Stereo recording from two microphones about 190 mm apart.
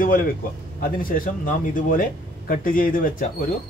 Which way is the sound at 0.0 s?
45° left (ahead or behind).